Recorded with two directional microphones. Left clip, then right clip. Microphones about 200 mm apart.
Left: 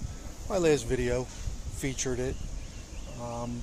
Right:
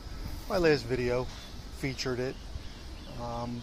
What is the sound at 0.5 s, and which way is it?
Speech, 15° left (ahead or behind).